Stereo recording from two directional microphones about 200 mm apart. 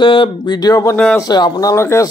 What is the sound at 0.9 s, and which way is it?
Speech, 5° left (ahead or behind).